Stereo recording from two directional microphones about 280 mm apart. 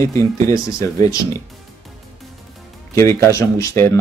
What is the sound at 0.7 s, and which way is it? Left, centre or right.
Speech, right.